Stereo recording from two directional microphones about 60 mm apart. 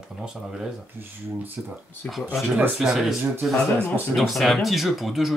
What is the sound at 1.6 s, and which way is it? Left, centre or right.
Speech, right.